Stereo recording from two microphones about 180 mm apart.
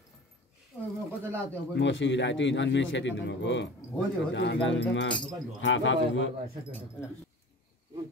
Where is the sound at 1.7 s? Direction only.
90° left.